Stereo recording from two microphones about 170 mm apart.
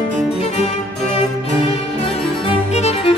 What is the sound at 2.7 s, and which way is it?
Music, 40° left (ahead or behind).